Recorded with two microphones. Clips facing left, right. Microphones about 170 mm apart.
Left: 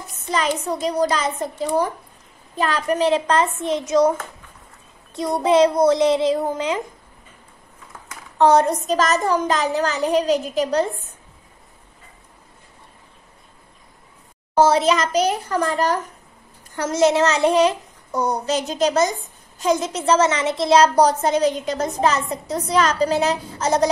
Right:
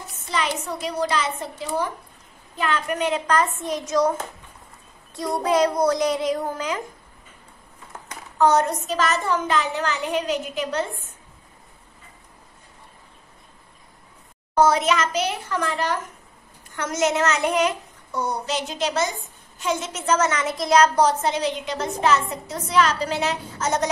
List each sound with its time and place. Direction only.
0.3 s a woman's voice: 40° left (ahead or behind); by 4.1 s 20° left (ahead or behind)
5.1 s a woman's voice: 20° left (ahead or behind)
8.4 s speech: 30° left (ahead or behind)
14.5 s speech: 30° left (ahead or behind)